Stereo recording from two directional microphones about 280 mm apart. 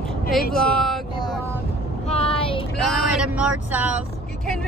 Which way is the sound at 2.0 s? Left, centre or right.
Left.